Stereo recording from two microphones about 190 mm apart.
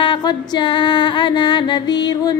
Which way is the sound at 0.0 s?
25° left (ahead or behind).